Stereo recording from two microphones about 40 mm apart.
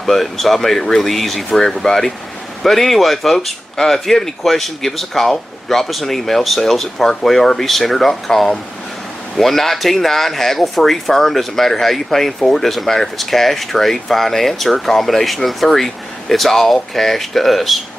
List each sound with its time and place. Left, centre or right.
0.0 s speech: centre
3.7 s speech: centre